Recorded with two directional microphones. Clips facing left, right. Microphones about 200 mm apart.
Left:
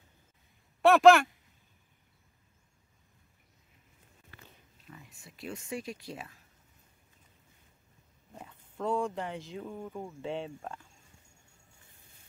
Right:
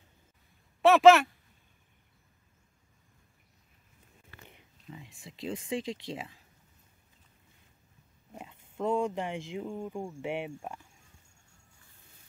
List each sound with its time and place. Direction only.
0.8 s speech: centre (ahead or behind)
4.5 s a sound: 20° right (ahead or behind)
5.1 s speech: 90° right
8.3 s speech: 15° right (ahead or behind)